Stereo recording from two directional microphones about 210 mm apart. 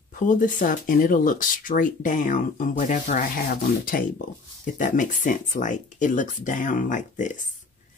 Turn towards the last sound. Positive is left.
turn(degrees=35)  # may be behind; listen again after turning